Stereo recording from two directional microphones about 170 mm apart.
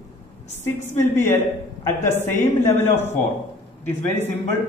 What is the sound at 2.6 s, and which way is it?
A woman's voice, 15° left (ahead or behind).